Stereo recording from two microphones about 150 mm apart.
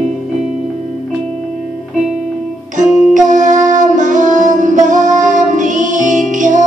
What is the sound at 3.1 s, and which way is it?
Music, 60° right (ahead or behind).